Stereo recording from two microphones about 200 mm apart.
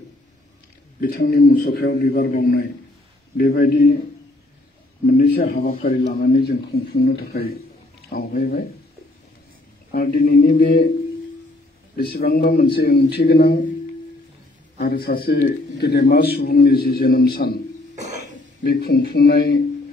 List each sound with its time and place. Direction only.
1.0 s speech: 50° left (ahead or behind)
5.0 s speech: 50° left (ahead or behind)
9.8 s speech: 50° left (ahead or behind)
12.0 s speech: 50° left (ahead or behind)
14.8 s speech: 50° left (ahead or behind)
18.6 s speech: 50° left (ahead or behind)